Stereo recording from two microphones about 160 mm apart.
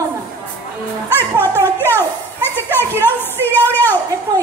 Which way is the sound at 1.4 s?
15° left (ahead or behind).